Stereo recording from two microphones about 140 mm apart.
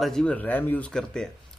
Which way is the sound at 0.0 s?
5° left (ahead or behind).